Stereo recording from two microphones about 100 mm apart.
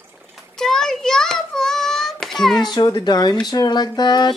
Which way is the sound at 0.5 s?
5° left (ahead or behind).